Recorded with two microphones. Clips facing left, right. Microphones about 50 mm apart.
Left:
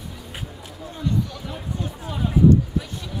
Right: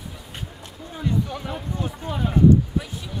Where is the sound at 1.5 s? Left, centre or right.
Centre.